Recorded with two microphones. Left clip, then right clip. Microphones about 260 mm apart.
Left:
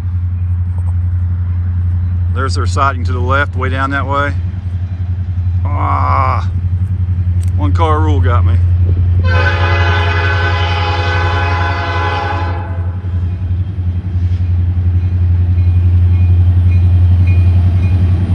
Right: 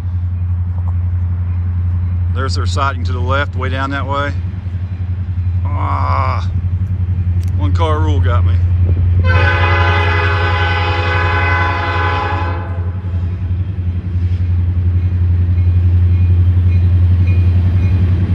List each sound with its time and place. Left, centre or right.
2.3 s speech: centre
5.7 s a sound: centre
7.6 s speech: centre
9.2 s train: centre